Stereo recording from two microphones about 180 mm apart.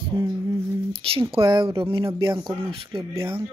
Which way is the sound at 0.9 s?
30° right (ahead or behind).